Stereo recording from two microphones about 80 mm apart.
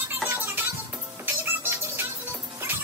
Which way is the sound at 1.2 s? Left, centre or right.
Right.